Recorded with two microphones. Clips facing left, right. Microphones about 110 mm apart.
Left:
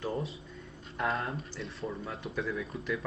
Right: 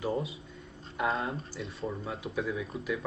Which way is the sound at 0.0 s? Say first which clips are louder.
Right 3 dB; 10° right (ahead or behind).